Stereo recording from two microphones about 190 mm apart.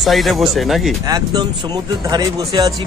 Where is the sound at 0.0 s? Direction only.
Centre (ahead or behind).